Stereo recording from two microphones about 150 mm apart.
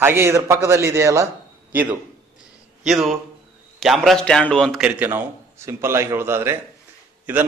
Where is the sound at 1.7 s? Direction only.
10° right (ahead or behind).